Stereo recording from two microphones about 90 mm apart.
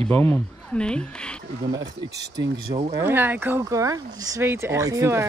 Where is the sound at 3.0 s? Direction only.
25° right (ahead or behind).